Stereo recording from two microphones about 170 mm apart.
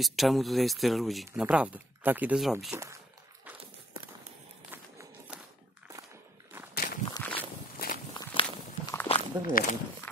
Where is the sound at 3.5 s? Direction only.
10° right (ahead or behind).